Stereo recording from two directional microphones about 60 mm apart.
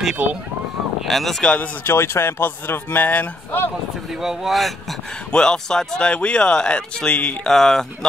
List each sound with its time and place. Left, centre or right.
0.1 s speech: right
1.0 s speech: centre
1.4 s speech: centre
1.9 s speech: left
4.2 s speech: centre
5.3 s speech: centre
7.4 s speech: centre